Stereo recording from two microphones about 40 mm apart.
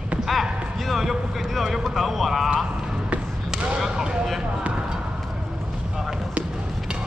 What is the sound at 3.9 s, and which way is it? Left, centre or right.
Speech, centre.